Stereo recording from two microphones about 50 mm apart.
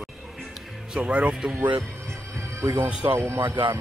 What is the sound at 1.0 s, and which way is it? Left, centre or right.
Speech, right.